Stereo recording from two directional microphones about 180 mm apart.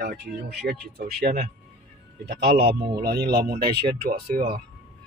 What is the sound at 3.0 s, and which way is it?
Speech, 60° right (ahead or behind).